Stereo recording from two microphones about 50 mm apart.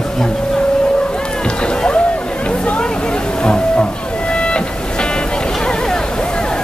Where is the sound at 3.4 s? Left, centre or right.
Left.